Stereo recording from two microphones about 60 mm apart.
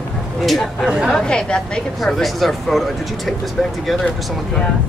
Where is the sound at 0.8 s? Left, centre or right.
Centre.